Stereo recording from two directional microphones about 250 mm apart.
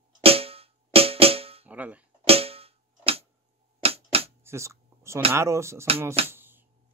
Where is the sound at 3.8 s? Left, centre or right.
Right.